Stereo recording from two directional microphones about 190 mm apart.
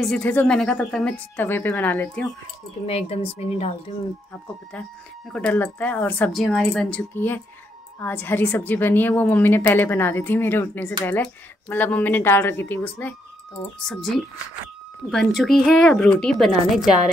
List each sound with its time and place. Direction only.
0.0 s a woman's voice: 5° left (ahead or behind)
2.9 s speech: 30° left (ahead or behind)
5.3 s a woman's voice: 5° left (ahead or behind)